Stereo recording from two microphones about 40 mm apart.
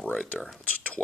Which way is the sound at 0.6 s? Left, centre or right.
Left.